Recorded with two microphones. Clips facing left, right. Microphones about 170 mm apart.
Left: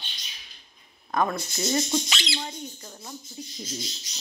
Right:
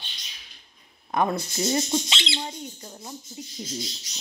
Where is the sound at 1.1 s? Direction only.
25° right (ahead or behind).